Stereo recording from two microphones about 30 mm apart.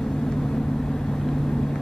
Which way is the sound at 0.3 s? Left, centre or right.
Centre.